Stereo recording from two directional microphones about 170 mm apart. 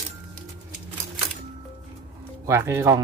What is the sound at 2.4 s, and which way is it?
Speech, 15° right (ahead or behind).